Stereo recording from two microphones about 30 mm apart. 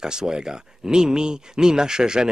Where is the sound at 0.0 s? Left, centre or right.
Right.